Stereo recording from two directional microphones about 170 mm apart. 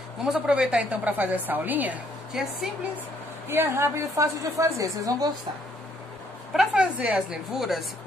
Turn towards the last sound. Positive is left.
turn(degrees=0)  # may be behind; listen again after turning